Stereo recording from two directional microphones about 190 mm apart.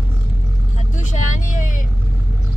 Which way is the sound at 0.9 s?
40° left (ahead or behind).